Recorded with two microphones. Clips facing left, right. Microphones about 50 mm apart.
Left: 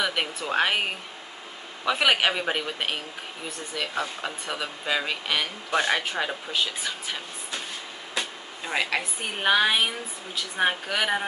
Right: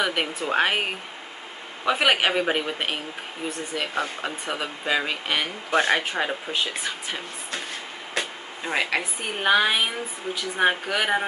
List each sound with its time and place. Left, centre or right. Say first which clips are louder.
0.0 s speech: right 2 dB; centre
1.9 s speech: right 1 dB; centre
3.7 s speech: right 1 dB; right
4.2 s speech: right 2 dB; centre
8.2 s a sound: right 2 dB; centre
9.2 s a woman's voice: right 1 dB; centre